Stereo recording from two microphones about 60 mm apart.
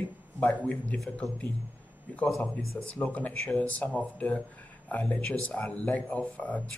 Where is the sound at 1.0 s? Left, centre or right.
Centre.